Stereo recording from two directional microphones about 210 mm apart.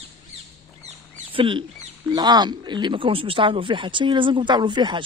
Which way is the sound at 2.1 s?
20° right (ahead or behind).